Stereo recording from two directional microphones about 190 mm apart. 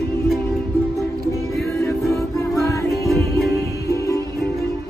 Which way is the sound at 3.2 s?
55° left (ahead or behind).